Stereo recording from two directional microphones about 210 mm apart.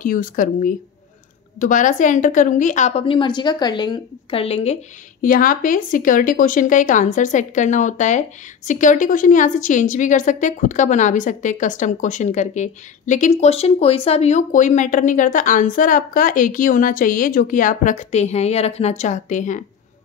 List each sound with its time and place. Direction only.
0.0 s a woman's voice: 40° left (ahead or behind)
5.2 s speech: 40° left (ahead or behind)